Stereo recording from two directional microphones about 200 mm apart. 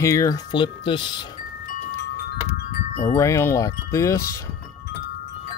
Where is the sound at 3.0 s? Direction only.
15° left (ahead or behind).